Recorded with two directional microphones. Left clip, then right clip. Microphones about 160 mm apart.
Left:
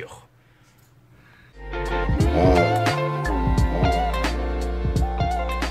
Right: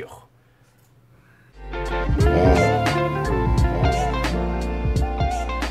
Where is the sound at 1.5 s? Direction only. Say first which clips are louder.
Even; centre (ahead or behind).